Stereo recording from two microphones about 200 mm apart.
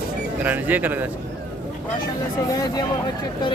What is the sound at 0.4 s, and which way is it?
Speech, 10° right (ahead or behind).